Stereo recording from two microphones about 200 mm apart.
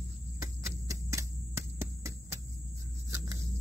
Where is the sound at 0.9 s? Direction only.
15° right (ahead or behind).